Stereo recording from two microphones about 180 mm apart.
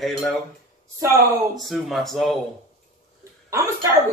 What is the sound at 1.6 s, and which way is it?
Speech, centre (ahead or behind).